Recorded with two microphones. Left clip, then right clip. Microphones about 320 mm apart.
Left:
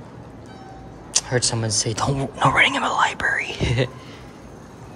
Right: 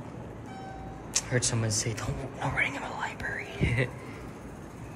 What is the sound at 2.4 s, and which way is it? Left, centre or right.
Speech, left.